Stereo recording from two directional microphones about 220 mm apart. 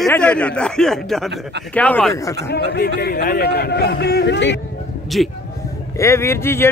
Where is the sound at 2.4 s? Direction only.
45° left (ahead or behind).